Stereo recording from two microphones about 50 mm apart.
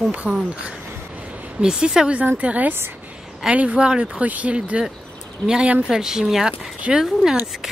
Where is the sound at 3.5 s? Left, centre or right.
Right.